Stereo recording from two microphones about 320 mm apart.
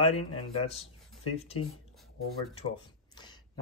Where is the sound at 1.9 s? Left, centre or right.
Centre.